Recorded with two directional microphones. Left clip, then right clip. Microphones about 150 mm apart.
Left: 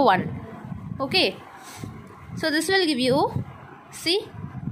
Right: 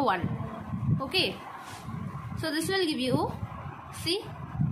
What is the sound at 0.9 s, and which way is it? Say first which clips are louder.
Speech: left 6 dB; 50° left (ahead or behind).